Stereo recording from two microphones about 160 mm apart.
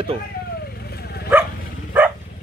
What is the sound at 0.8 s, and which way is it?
Bow-wow, 85° left.